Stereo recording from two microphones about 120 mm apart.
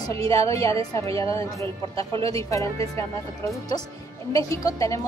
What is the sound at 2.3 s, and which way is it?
Speech, 25° left (ahead or behind).